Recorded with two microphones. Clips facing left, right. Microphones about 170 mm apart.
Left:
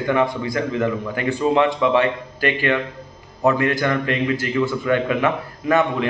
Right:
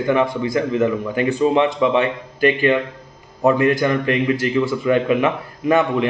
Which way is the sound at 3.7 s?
20° right (ahead or behind).